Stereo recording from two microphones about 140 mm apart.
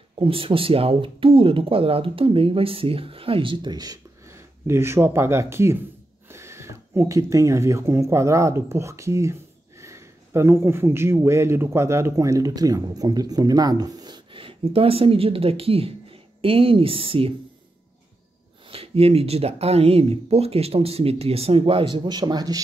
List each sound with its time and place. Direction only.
0.2 s speech: 40° right (ahead or behind)
18.7 s speech: 45° right (ahead or behind)